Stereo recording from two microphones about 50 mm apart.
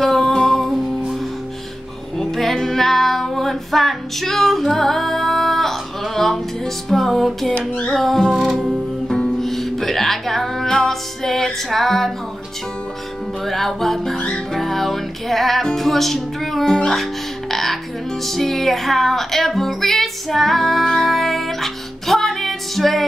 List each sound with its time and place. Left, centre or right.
0.0 s music: centre
2.1 s female singing: centre
7.9 s music: centre
13.5 s music: centre